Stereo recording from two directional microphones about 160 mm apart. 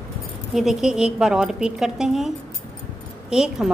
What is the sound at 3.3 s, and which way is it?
Speech, 5° right (ahead or behind).